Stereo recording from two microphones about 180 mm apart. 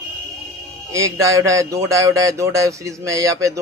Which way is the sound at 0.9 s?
20° right (ahead or behind).